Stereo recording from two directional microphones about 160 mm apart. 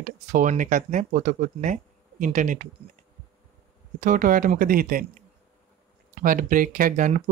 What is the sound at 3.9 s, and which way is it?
Speech, 55° right (ahead or behind).